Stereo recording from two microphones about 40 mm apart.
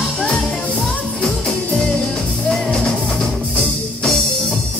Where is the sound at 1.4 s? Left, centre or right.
Centre.